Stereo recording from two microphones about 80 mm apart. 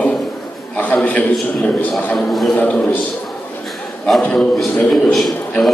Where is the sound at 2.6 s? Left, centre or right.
Centre.